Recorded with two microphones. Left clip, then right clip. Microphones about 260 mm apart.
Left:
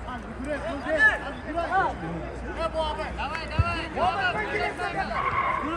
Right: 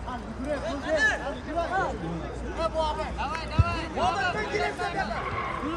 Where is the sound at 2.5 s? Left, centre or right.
Right.